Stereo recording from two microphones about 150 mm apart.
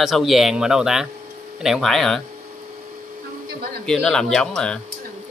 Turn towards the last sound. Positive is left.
turn(degrees=5)  # may be behind; listen again after turning